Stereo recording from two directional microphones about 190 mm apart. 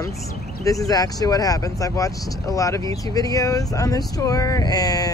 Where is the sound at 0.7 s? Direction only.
20° left (ahead or behind).